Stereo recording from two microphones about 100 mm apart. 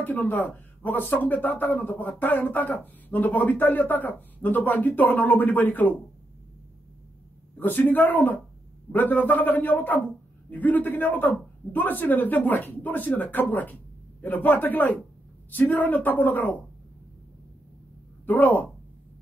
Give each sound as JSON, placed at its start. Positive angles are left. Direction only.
{"t": 0.0, "sound": "speech", "side_deg": 20}
{"t": 7.5, "sound": "speech", "side_deg": 20}
{"t": 18.2, "sound": "speech", "side_deg": 15}